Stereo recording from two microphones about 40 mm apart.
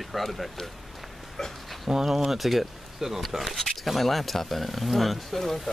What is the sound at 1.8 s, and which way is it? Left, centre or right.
Speech, centre.